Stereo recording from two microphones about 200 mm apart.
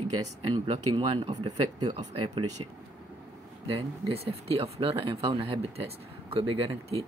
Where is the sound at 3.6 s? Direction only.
30° right (ahead or behind).